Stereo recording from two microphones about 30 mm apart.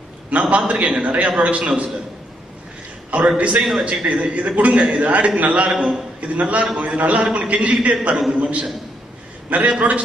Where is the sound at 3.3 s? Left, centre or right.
Right.